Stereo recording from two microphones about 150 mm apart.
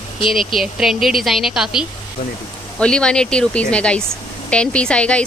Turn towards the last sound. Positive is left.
turn(degrees=5)  # may be behind; listen again after turning